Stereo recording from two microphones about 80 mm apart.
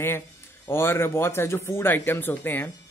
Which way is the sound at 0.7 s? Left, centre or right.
Left.